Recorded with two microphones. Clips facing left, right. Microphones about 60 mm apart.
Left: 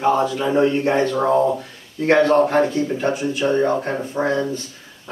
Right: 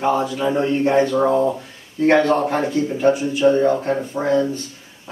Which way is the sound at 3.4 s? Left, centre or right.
Centre.